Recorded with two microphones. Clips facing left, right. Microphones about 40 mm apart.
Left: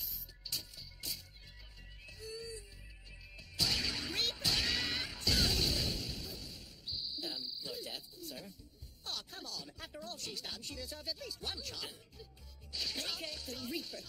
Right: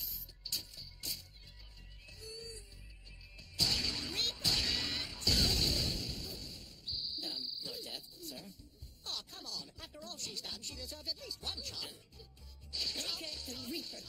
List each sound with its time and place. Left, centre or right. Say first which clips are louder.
0.0 s music: even; centre
9.0 s speech: left 1 dB; centre